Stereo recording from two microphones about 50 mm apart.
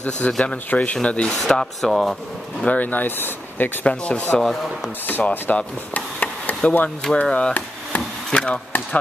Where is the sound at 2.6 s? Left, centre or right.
Left.